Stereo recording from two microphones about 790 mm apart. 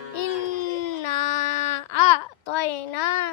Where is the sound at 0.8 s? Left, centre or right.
Left.